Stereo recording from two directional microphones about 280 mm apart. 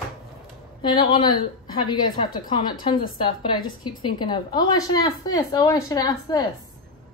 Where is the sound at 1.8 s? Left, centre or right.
Centre.